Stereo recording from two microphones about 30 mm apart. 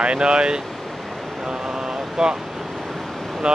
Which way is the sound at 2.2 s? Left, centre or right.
Centre.